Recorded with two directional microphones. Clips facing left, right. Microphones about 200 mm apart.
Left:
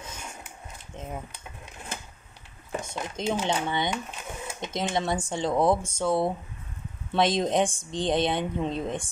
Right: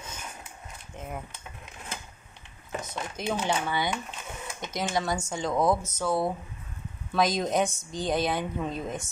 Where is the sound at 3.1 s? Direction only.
20° left (ahead or behind).